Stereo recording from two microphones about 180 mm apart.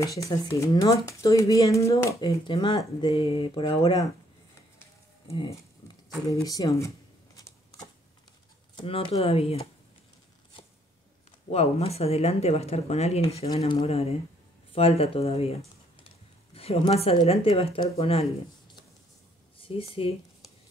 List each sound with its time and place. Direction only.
0.2 s speech: 20° left (ahead or behind)
2.5 s speech: 35° left (ahead or behind)
6.4 s speech: 20° left (ahead or behind)
7.3 s shuffling cards: 20° left (ahead or behind)
8.7 s speech: 30° left (ahead or behind)
11.5 s speech: 35° left (ahead or behind)
16.5 s speech: 35° left (ahead or behind)
19.6 s speech: 30° left (ahead or behind)